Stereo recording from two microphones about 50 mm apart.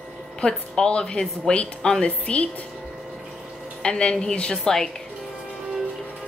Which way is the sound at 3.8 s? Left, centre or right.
Centre.